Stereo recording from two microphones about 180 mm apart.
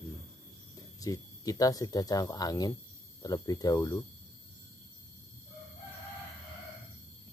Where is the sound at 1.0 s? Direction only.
20° left (ahead or behind).